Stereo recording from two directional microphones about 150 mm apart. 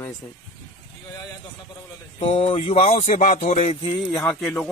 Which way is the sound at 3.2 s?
75° left (ahead or behind).